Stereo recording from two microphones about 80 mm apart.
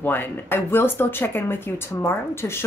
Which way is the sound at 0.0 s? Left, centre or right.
Left.